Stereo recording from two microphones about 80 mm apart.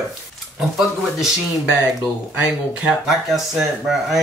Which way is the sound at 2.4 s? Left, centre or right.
Centre.